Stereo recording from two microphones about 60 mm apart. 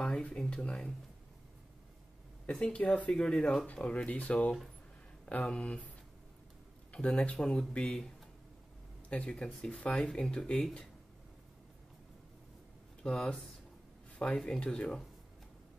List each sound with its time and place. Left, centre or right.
0.0 s speech: centre
2.4 s speech: centre
3.1 s speech: centre
3.6 s speech: centre
6.9 s speech: centre
9.1 s speech: centre
13.0 s speech: centre